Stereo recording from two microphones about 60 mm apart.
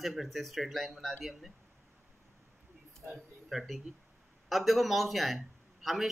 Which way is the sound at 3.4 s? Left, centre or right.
Centre.